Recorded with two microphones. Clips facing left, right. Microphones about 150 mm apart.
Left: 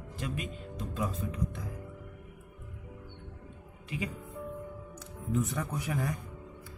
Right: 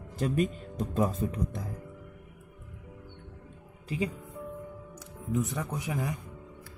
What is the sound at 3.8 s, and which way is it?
Speech, 35° right (ahead or behind).